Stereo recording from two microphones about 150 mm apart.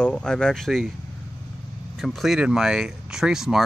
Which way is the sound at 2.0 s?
Centre (ahead or behind).